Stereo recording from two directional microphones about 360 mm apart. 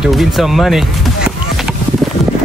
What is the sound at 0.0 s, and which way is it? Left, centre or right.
Speech, centre.